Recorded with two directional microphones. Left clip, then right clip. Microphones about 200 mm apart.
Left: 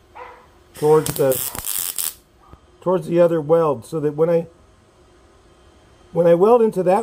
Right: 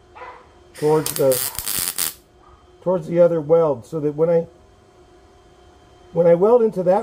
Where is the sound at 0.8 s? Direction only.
40° left (ahead or behind).